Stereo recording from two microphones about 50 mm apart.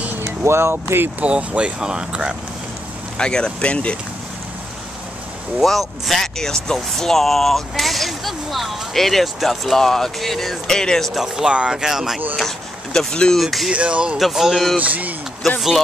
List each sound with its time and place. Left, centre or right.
0.4 s speech: right
1.2 s speech: right
3.2 s speech: centre
5.6 s speech: centre
11.2 s speech: centre
12.4 s speech: centre
13.4 s speech: centre
13.7 s speech: right
14.1 s speech: centre
14.8 s speech: right